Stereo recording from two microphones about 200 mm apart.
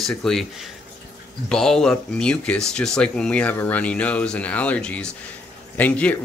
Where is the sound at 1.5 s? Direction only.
5° left (ahead or behind).